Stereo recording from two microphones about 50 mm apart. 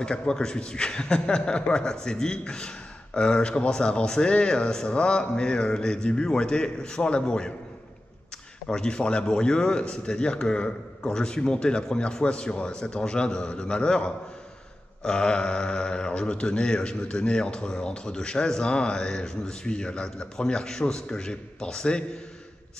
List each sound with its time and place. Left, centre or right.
0.0 s speech: centre
8.6 s speech: centre